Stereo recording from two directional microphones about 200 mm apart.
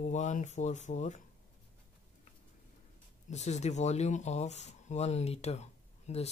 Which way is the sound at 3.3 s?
35° left (ahead or behind).